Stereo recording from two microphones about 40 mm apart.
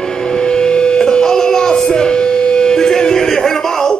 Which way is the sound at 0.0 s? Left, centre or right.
Centre.